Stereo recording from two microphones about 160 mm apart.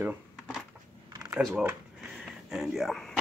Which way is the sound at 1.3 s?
5° right (ahead or behind).